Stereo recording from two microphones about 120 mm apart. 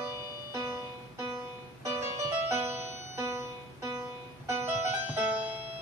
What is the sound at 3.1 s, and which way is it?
Music, 25° right (ahead or behind).